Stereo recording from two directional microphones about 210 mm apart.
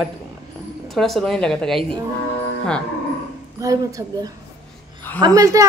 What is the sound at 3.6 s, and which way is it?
Speech, 15° right (ahead or behind).